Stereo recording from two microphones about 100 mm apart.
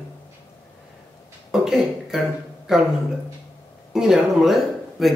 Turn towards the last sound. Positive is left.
turn(degrees=0)  # may be behind; listen again after turning